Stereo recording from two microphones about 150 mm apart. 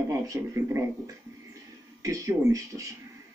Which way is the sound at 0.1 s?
20° right (ahead or behind).